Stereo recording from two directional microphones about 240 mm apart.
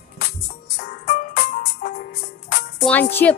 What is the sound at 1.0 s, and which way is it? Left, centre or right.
Music, left.